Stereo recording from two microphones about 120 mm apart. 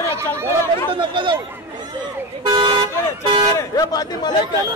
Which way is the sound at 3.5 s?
30° left (ahead or behind).